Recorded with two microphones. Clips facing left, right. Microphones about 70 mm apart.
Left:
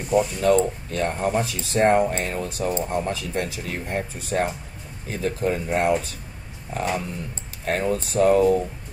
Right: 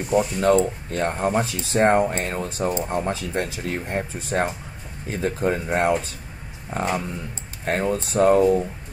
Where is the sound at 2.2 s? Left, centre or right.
Right.